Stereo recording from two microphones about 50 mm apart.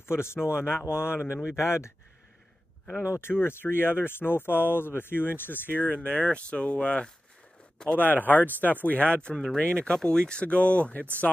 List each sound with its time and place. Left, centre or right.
0.1 s speech: left
1.6 s speech: left
3.2 s speech: left
6.0 s speech: left
8.0 s speech: left